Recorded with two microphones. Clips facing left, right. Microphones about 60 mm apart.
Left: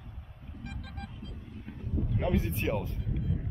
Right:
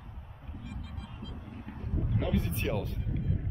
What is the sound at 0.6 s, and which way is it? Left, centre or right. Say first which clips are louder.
Vehicle: left 2 dB; left.